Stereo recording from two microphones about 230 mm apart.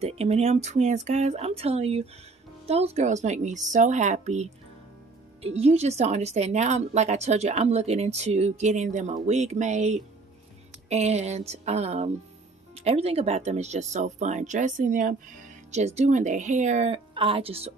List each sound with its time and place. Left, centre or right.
0.0 s speech: right